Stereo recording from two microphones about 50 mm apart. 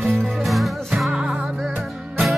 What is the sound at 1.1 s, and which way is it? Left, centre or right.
Music, centre.